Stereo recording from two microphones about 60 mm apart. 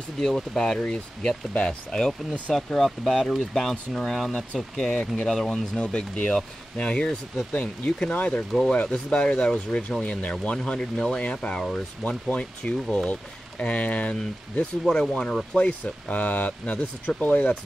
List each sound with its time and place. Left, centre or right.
0.2 s speech: centre
8.3 s speech: centre
14.1 s speech: centre